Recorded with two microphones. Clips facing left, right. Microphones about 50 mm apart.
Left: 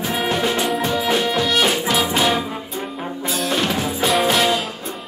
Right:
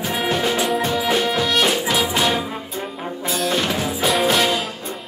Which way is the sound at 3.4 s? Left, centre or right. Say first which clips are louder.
Left 1 dB; centre.